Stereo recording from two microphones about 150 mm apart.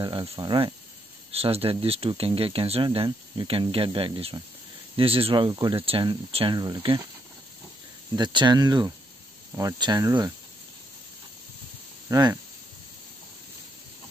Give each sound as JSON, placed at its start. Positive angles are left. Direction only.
{"t": 0.0, "sound": "speech", "side_deg": -30}
{"t": 1.3, "sound": "speech", "side_deg": -40}
{"t": 8.2, "sound": "speech", "side_deg": -30}
{"t": 12.1, "sound": "speech", "side_deg": -25}